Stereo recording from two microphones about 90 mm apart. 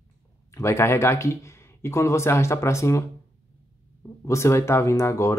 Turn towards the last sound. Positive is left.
turn(degrees=30)  # may be behind; listen again after turning